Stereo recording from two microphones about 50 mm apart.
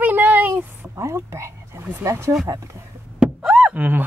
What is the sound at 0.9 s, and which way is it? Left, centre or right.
Speech, right.